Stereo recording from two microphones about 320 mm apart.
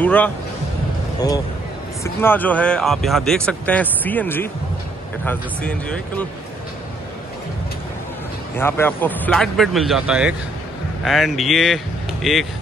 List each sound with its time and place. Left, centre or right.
0.0 s speech: centre
2.0 s speech: centre
8.5 s speech: centre